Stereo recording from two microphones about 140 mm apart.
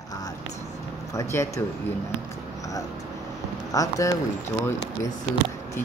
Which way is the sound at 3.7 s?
25° left (ahead or behind).